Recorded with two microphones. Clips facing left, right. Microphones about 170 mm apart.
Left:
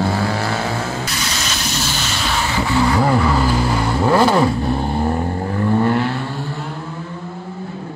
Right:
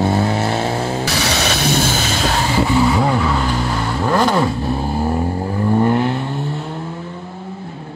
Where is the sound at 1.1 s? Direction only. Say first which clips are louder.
Right 6 dB; 70° right (ahead or behind); by 2.4 s 45° right (ahead or behind).